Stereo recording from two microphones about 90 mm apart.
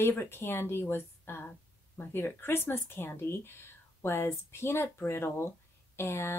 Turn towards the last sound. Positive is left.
turn(degrees=30)  # may be behind; listen again after turning